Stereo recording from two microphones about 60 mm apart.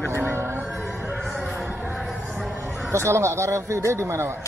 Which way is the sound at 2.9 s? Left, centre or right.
Right.